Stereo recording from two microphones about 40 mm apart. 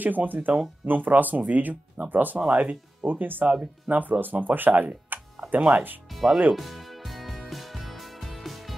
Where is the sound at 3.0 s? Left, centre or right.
Right.